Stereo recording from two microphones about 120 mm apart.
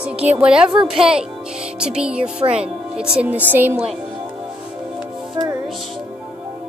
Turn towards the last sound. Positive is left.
turn(degrees=-30)  # may be behind; listen again after turning